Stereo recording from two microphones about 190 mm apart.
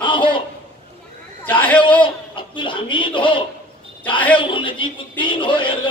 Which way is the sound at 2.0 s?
25° left (ahead or behind).